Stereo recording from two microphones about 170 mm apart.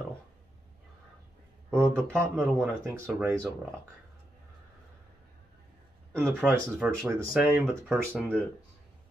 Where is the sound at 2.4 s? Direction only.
15° right (ahead or behind).